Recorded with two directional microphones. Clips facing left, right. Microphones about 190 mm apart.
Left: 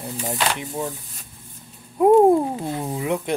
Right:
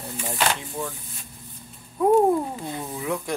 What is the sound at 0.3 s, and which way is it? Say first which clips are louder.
Speech: even; 20° left (ahead or behind).